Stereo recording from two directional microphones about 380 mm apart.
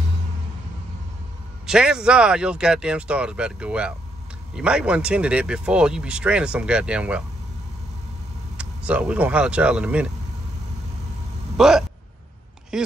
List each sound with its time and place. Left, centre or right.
1.7 s speech: centre
8.5 s speech: centre
11.5 s a man's voice: centre